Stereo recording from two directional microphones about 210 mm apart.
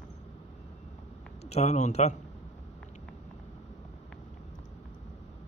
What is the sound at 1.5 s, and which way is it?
Speech, 35° left (ahead or behind).